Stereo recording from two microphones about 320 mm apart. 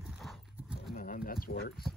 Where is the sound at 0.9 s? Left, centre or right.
Left.